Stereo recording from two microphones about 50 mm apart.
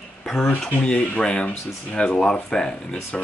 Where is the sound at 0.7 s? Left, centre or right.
Left.